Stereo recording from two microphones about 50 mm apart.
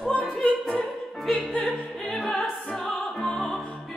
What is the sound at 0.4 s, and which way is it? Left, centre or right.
Opera, centre.